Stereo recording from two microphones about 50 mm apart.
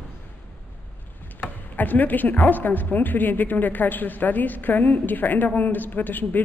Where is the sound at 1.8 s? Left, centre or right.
Left.